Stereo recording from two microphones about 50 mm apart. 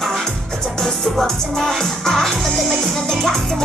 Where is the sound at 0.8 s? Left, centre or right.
Centre.